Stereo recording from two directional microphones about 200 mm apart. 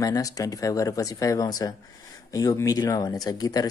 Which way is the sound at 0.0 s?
15° left (ahead or behind).